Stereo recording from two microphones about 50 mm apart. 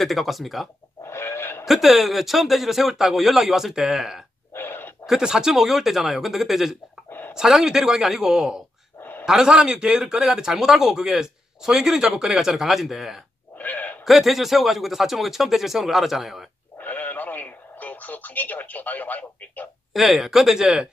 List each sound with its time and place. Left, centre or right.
0.0 s speech: centre
1.0 s a sound: left
1.7 s speech: centre
4.6 s a sound: left
5.0 s speech: centre
7.1 s a sound: left
7.3 s a man's voice: centre
13.6 s sheep: left
14.0 s speech: centre
16.8 s radio: left
19.9 s speech: centre